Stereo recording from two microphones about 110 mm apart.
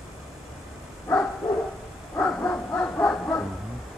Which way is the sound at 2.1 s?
20° left (ahead or behind).